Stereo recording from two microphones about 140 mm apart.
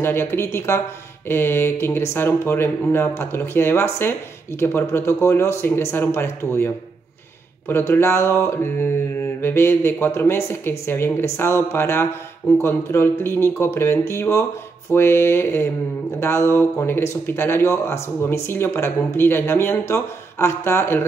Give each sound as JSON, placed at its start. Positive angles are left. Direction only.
{"t": 0.0, "sound": "speech", "side_deg": 15}